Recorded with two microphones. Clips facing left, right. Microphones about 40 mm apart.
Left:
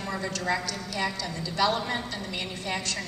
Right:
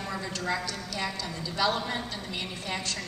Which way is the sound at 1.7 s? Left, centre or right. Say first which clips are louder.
Left 2 dB; centre.